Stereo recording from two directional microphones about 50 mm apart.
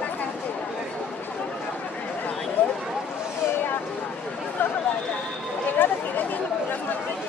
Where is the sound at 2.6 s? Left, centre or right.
Left.